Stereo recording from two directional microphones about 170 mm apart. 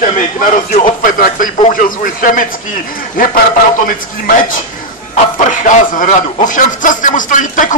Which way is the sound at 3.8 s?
50° left (ahead or behind).